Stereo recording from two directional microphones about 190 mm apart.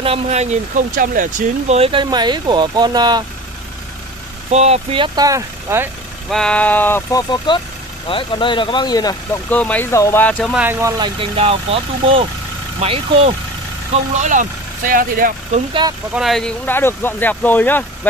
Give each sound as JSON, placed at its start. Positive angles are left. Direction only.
{"t": 0.0, "sound": "speech", "side_deg": -35}
{"t": 1.8, "sound": "speech", "side_deg": -25}
{"t": 4.5, "sound": "speech", "side_deg": -35}
{"t": 6.3, "sound": "speech", "side_deg": 5}
{"t": 9.5, "sound": "speech", "side_deg": 10}
{"t": 10.5, "sound": "speech", "side_deg": -10}
{"t": 11.1, "sound": "speech", "side_deg": -30}
{"t": 16.2, "sound": "speech", "side_deg": 0}